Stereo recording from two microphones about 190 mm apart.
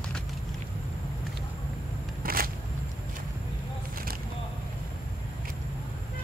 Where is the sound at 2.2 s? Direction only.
50° right (ahead or behind).